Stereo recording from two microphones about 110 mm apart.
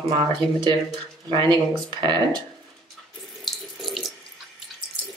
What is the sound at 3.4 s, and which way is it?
Water tap, centre (ahead or behind).